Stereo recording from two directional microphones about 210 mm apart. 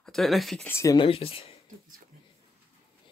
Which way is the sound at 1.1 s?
25° left (ahead or behind).